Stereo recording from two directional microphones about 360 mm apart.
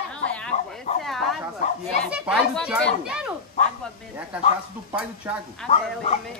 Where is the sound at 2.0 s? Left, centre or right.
Centre.